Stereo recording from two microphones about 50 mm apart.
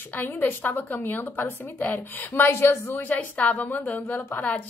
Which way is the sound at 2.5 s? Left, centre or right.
Left.